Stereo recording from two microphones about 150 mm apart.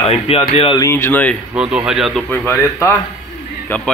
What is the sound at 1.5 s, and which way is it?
Speech, 5° right (ahead or behind).